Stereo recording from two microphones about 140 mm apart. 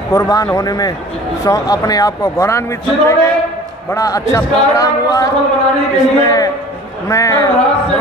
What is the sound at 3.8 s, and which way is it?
Speech, 25° left (ahead or behind).